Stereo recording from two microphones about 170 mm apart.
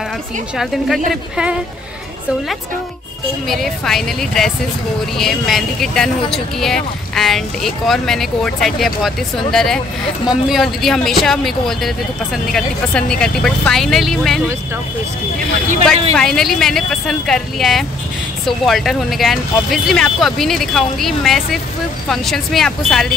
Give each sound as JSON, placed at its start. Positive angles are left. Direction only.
{"t": 0.6, "sound": "speech", "side_deg": 0}
{"t": 3.4, "sound": "speech", "side_deg": 0}
{"t": 16.2, "sound": "speech", "side_deg": 5}